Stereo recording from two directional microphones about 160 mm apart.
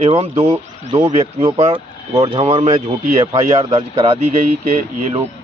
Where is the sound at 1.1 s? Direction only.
45° right (ahead or behind).